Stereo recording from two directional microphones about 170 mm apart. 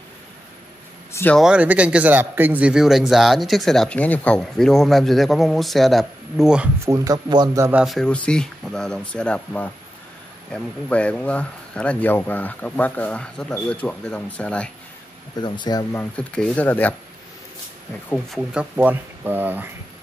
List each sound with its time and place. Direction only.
1.1 s speech: 10° left (ahead or behind)
1.4 s speech: 5° right (ahead or behind)
6.8 s speech: 20° right (ahead or behind)
7.7 s speech: centre (ahead or behind)
15.4 s speech: 25° left (ahead or behind)
15.9 s speech: 10° left (ahead or behind)
18.5 s speech: 10° right (ahead or behind)